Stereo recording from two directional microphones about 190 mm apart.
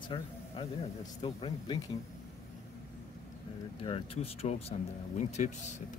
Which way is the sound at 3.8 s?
30° left (ahead or behind).